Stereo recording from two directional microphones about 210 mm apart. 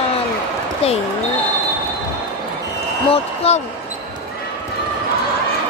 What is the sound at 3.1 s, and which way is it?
Speech, 30° left (ahead or behind).